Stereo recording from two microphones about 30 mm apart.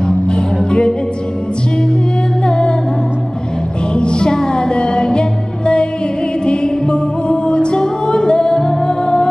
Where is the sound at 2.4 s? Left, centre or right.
Left.